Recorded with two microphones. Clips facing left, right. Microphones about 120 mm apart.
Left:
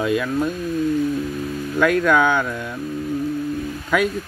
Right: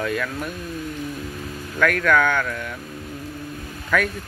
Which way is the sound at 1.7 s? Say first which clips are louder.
Left 2 dB; 20° left (ahead or behind).